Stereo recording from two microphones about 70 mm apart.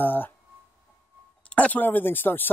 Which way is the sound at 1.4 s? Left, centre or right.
Left.